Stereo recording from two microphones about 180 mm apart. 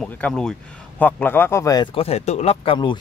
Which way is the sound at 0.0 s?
5° left (ahead or behind).